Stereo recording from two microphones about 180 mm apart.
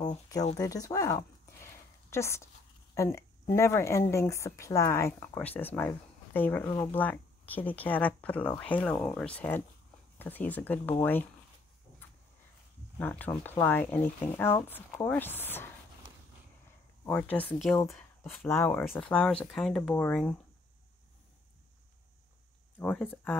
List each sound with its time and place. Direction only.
0.6 s a sound: 20° left (ahead or behind)
2.9 s a woman's voice: 15° left (ahead or behind)
13.0 s a woman's voice: 10° left (ahead or behind)
17.0 s a woman's voice: 5° left (ahead or behind)
17.7 s a sound: 15° left (ahead or behind)
18.3 s a woman's voice: 10° left (ahead or behind)
22.8 s a woman's voice: 10° left (ahead or behind)